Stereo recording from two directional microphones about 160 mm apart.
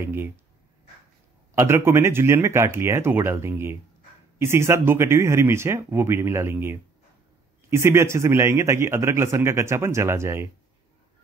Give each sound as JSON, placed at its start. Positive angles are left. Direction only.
{"t": 0.0, "sound": "a man's voice", "side_deg": -15}
{"t": 1.5, "sound": "a man's voice", "side_deg": -15}